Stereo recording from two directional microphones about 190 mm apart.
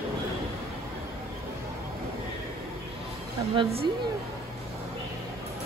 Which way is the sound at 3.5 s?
25° right (ahead or behind).